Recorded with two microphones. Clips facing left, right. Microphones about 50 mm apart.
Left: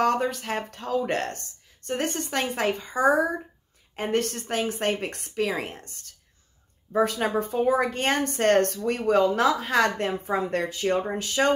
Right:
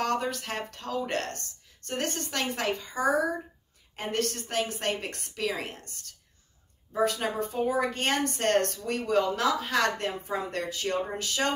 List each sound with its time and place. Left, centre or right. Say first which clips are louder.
0.0 s a woman's voice: left 5 dB; left
7.2 s speech: left 5 dB; left
7.6 s speech: left 4 dB; left
7.9 s a woman's voice: left 3 dB; left